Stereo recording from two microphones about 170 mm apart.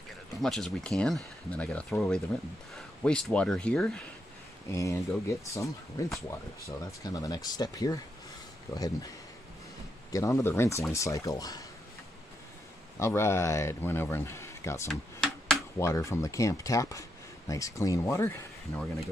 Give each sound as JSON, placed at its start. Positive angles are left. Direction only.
{"t": 0.4, "sound": "speech", "side_deg": 0}
{"t": 4.6, "sound": "speech", "side_deg": 20}
{"t": 10.1, "sound": "speech", "side_deg": 15}
{"t": 13.0, "sound": "speech", "side_deg": 15}
{"t": 14.9, "sound": "a sound", "side_deg": 5}
{"t": 15.8, "sound": "speech", "side_deg": 15}